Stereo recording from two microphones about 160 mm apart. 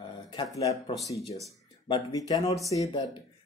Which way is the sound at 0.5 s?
20° left (ahead or behind).